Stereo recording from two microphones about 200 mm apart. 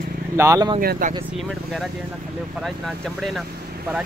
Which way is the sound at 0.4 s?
15° right (ahead or behind).